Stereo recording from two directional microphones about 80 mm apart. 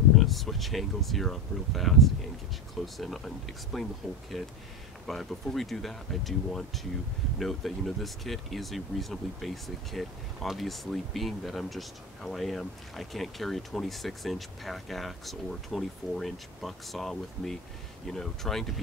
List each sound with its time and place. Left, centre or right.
0.2 s speech: centre